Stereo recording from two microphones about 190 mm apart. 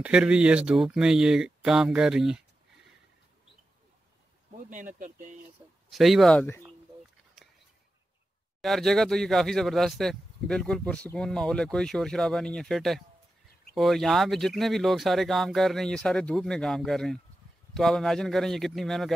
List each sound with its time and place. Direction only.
0.0 s speech: 5° right (ahead or behind)
4.5 s speech: 40° right (ahead or behind)
5.9 s speech: centre (ahead or behind)
8.5 s speech: centre (ahead or behind)